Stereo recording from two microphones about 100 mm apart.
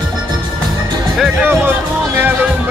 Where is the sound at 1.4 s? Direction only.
20° right (ahead or behind).